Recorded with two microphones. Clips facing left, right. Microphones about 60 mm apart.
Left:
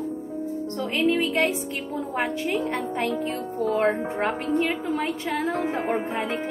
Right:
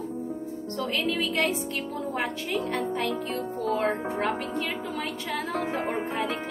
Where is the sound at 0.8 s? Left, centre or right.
Centre.